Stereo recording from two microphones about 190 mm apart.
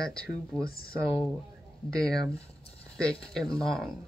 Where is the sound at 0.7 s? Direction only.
50° left (ahead or behind).